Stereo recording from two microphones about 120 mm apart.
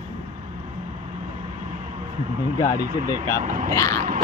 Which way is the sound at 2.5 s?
30° left (ahead or behind).